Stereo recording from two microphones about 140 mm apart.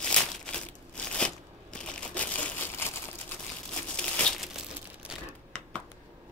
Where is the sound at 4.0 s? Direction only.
5° left (ahead or behind).